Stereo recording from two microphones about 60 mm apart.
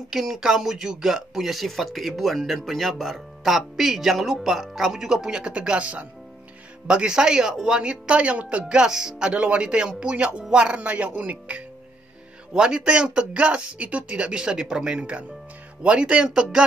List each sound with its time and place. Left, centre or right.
0.1 s speech: centre; by 11.6 s right
12.5 s speech: centre